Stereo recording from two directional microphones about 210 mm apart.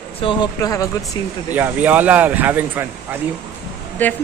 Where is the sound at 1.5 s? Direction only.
10° right (ahead or behind).